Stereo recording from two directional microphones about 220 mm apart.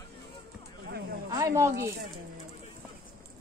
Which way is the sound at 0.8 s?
45° right (ahead or behind).